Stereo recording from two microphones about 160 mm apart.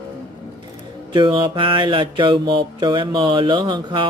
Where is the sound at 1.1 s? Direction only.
30° right (ahead or behind).